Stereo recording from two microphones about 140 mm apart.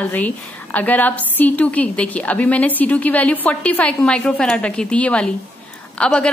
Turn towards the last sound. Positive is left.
turn(degrees=5)  # may be behind; listen again after turning